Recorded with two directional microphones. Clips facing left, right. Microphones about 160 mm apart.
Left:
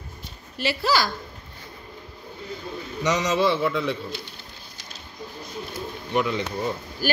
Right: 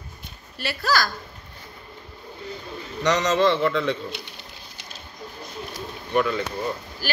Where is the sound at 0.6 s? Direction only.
15° left (ahead or behind).